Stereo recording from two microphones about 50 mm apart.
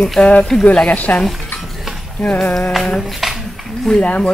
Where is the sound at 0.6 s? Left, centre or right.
Left.